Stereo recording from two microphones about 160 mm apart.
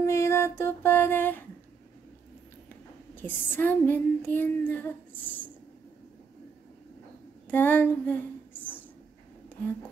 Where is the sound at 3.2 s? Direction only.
10° left (ahead or behind).